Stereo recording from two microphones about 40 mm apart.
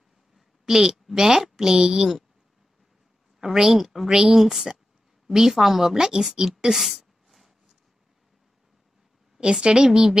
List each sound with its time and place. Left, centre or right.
0.7 s a woman's voice: centre
3.3 s a woman's voice: centre
6.3 s a sound: centre
9.4 s a woman's voice: right